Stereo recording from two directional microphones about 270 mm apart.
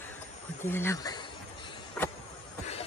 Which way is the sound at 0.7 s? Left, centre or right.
Centre.